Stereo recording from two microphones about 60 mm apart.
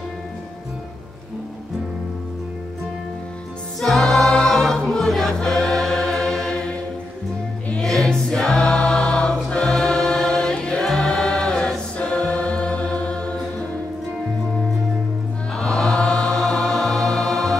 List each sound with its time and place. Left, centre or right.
3.8 s choir: centre
7.8 s choir: centre
15.5 s choir: centre